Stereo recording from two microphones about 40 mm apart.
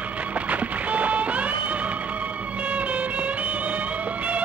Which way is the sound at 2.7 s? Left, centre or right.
Right.